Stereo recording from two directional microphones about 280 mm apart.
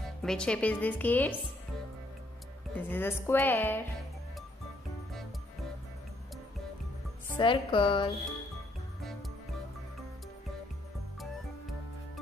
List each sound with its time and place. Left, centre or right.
0.0 s speech: centre
2.7 s a woman's voice: centre
7.3 s a woman's voice: centre